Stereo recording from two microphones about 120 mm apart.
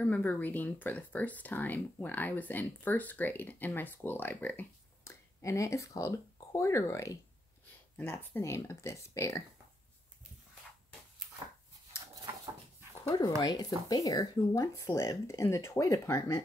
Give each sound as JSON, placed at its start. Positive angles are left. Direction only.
{"t": 0.0, "sound": "speech", "side_deg": 15}
{"t": 5.4, "sound": "speech", "side_deg": 25}
{"t": 13.4, "sound": "speech", "side_deg": 30}